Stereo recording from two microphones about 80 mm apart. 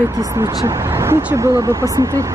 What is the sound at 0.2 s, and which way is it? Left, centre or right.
Speech, right.